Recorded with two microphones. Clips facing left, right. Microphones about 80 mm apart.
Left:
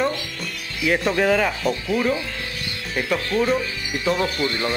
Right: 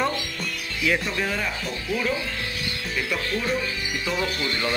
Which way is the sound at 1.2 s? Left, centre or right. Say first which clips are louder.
Left 9 dB; left.